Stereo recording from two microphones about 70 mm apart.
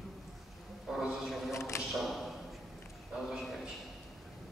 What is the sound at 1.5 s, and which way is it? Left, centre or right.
Speech, left.